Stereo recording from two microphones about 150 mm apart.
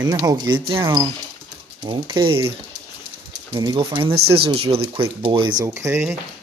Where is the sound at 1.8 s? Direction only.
30° right (ahead or behind).